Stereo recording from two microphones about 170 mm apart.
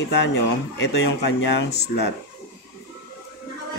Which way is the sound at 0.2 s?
90° left.